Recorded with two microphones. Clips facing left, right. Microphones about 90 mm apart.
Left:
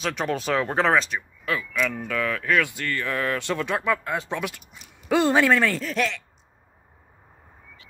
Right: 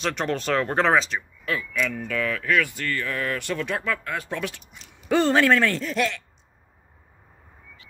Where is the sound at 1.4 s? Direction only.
20° left (ahead or behind).